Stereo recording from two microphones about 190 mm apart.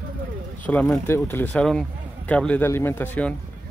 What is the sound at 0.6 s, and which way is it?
Speech, 10° left (ahead or behind).